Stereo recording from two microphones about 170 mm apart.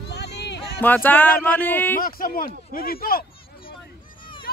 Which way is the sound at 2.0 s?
55° left (ahead or behind).